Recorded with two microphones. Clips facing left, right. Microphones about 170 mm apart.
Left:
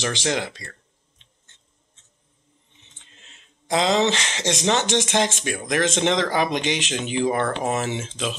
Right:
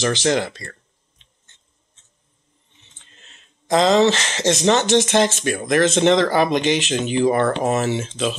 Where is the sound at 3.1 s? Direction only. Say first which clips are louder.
Right 2 dB; 10° left (ahead or behind).